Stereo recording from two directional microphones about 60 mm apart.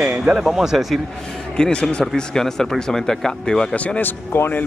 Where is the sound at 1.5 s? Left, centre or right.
Centre.